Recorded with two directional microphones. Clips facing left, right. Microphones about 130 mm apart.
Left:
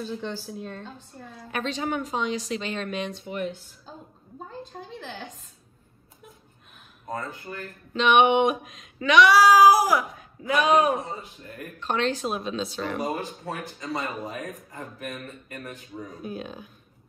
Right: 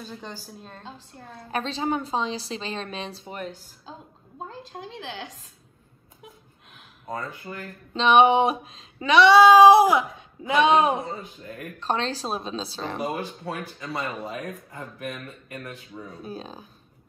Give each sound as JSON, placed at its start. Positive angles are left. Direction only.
{"t": 0.0, "sound": "a woman's voice", "side_deg": -45}
{"t": 1.5, "sound": "a woman's voice", "side_deg": -35}
{"t": 4.5, "sound": "a woman's voice", "side_deg": -90}
{"t": 7.4, "sound": "a woman's voice", "side_deg": -30}
{"t": 13.1, "sound": "speech", "side_deg": 35}
{"t": 16.1, "sound": "a woman's voice", "side_deg": -30}